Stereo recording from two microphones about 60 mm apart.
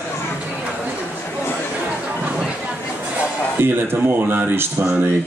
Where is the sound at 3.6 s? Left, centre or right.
Right.